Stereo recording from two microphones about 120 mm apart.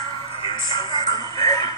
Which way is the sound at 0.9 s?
35° left (ahead or behind).